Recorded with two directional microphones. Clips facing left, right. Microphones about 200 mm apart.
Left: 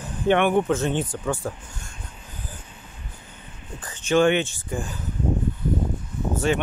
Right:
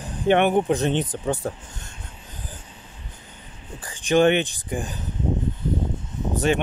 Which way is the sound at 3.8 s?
15° right (ahead or behind).